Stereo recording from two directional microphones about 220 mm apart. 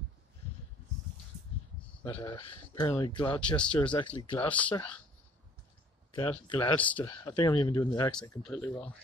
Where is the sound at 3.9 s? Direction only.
20° left (ahead or behind).